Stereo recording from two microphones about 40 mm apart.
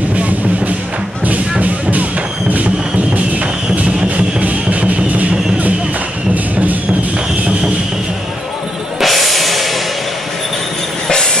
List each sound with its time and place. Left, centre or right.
0.1 s music: right
3.2 s music: right
9.0 s music: centre
11.1 s train: centre